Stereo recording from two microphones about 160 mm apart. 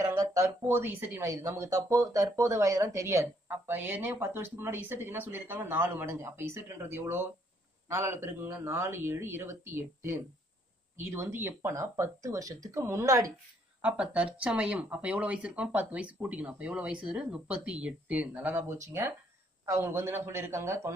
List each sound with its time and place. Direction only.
0.0 s a woman's voice: 20° right (ahead or behind)
13.7 s a woman's voice: 10° right (ahead or behind)